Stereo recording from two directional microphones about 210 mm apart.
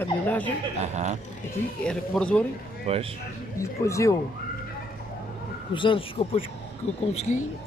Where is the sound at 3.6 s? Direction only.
15° left (ahead or behind).